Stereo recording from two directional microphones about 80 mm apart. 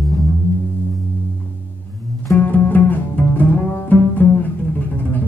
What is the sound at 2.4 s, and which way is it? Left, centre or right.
Cello, left.